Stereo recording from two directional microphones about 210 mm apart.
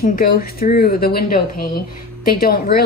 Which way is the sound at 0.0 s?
45° left (ahead or behind).